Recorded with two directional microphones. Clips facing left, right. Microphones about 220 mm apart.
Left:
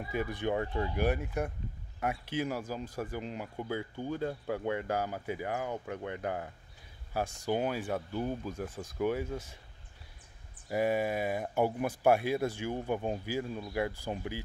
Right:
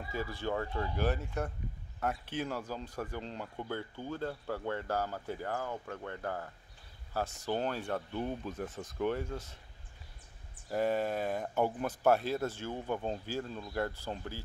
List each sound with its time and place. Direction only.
0.0 s speech: 20° left (ahead or behind)
10.7 s speech: 10° left (ahead or behind)